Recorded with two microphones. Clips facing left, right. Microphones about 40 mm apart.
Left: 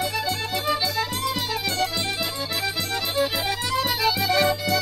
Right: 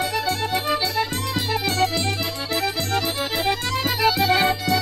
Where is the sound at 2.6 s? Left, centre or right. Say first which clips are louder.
Right 5 dB; right.